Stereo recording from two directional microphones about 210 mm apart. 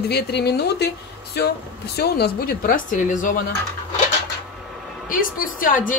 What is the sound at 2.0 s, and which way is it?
A woman's voice, 50° left (ahead or behind).